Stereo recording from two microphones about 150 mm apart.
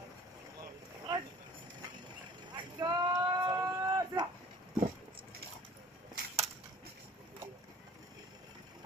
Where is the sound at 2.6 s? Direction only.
30° right (ahead or behind).